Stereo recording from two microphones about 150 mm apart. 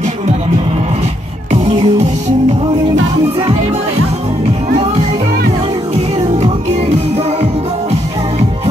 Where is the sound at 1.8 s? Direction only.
50° right (ahead or behind).